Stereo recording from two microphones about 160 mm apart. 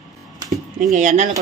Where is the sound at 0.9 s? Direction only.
50° right (ahead or behind).